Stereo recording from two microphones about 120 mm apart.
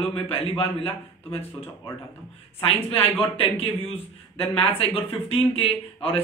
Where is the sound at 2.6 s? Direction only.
50° left (ahead or behind).